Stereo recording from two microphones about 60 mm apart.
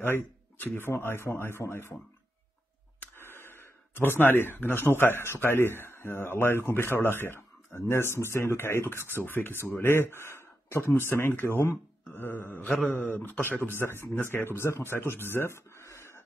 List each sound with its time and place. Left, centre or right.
0.7 s speech: left
3.2 s gasp: left
4.9 s speech: left
15.8 s a sound: left